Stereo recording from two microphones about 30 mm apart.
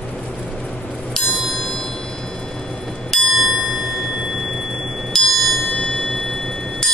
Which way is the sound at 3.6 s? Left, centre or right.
Centre.